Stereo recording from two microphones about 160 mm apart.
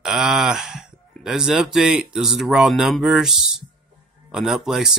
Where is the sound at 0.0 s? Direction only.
Centre (ahead or behind).